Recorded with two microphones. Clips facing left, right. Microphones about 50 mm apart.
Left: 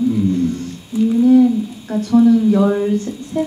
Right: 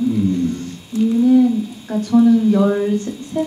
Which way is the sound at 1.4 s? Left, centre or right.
Centre.